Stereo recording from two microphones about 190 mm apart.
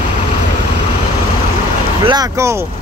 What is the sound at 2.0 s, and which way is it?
Speech, 20° right (ahead or behind).